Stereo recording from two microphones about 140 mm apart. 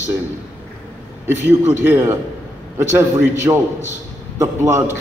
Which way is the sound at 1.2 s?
15° right (ahead or behind).